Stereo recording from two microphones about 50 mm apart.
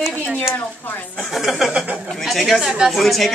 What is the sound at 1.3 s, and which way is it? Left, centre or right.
Speech, centre.